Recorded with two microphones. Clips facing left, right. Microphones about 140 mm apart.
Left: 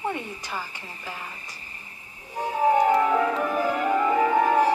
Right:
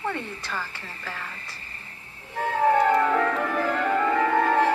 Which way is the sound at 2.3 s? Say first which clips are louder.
Even; 15° left (ahead or behind).